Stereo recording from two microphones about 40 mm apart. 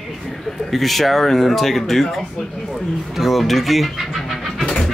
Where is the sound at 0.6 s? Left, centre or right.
Centre.